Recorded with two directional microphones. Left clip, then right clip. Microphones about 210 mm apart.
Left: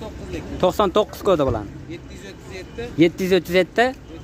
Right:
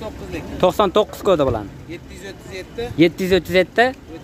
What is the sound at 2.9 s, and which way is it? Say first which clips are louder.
Speech: right 1 dB; 5° right (ahead or behind).